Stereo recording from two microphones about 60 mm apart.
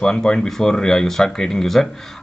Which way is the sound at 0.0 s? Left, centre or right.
Centre.